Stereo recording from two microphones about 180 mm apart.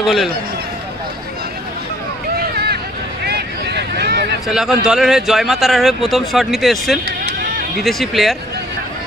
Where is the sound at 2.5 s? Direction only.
60° right (ahead or behind).